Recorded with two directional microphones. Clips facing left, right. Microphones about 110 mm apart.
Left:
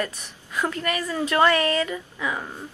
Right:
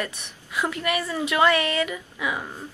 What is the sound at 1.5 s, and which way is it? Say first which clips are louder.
Speech: left 1 dB; 35° left (ahead or behind).